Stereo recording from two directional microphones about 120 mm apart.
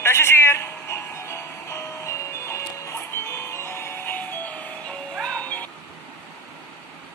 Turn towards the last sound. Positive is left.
turn(degrees=10)  # may be behind; listen again after turning